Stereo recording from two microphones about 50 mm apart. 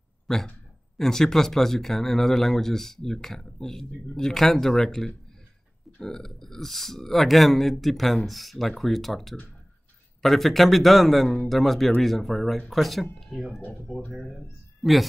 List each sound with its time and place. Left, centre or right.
0.3 s speech: centre
14.8 s a woman's voice: centre